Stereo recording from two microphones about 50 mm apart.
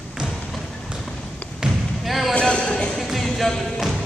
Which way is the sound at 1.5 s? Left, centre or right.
Centre.